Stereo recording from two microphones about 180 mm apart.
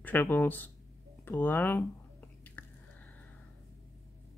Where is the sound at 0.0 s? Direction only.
10° left (ahead or behind).